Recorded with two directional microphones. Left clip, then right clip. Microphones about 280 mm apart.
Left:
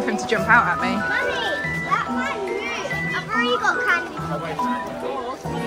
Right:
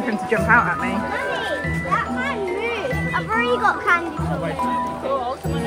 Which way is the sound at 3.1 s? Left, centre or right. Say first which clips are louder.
Right 2 dB; right.